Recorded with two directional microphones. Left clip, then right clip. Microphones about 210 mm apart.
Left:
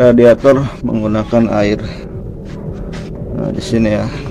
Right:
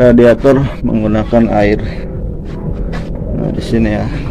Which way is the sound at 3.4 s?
15° left (ahead or behind).